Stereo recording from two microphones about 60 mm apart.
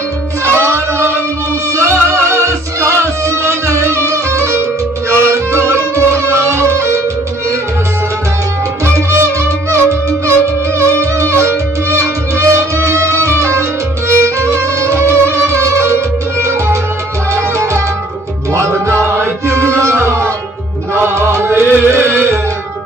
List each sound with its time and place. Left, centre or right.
0.5 s music: right
8.8 s music: right
19.0 s chant: right
20.9 s music: right